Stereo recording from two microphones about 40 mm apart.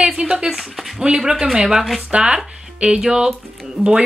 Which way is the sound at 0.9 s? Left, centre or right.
Centre.